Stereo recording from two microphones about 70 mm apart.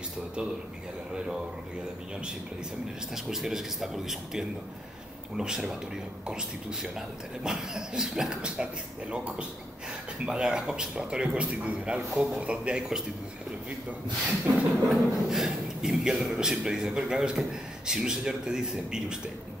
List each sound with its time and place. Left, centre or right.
3.3 s a man's voice: centre
12.1 s speech: centre
12.4 s a man's voice: centre
14.2 s a sound: right
14.9 s a man's voice: centre